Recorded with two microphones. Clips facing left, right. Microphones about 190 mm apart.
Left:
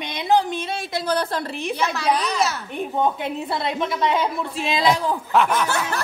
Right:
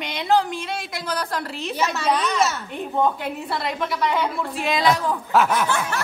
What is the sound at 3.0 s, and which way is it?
A woman's voice, 20° left (ahead or behind).